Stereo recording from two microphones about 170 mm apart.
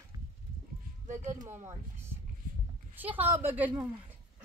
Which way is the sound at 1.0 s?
45° right (ahead or behind).